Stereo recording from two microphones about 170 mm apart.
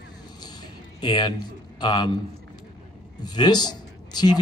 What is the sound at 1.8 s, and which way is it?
Speech, 25° left (ahead or behind).